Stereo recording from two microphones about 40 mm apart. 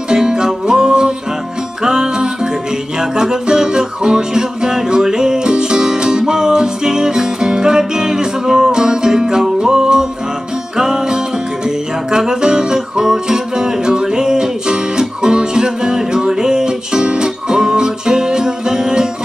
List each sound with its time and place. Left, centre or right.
0.1 s music: centre